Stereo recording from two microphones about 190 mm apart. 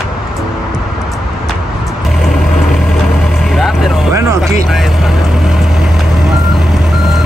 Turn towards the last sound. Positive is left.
turn(degrees=0)  # may be behind; listen again after turning